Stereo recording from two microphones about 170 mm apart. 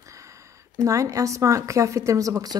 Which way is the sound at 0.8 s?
20° right (ahead or behind).